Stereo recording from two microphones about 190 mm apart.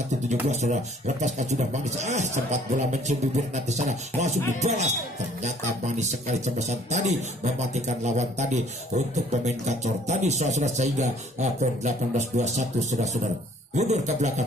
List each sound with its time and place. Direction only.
0.1 s speech: 40° right (ahead or behind)